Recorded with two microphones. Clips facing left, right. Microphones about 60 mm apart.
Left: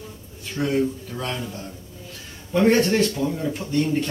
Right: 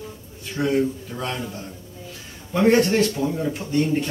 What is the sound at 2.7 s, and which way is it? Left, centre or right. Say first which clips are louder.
Speech: right 1 dB; centre.